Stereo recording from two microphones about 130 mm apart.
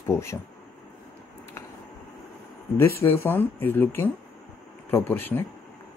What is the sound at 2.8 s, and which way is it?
Speech, 20° left (ahead or behind).